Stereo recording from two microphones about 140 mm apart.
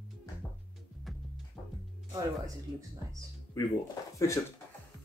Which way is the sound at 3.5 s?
30° left (ahead or behind).